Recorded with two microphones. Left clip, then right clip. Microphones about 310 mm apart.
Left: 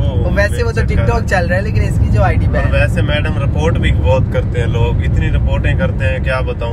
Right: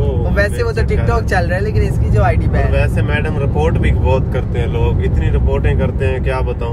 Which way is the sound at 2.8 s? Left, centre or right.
Centre.